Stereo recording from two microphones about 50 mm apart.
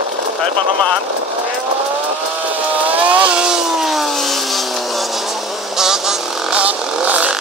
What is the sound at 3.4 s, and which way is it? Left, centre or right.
Vehicle, centre.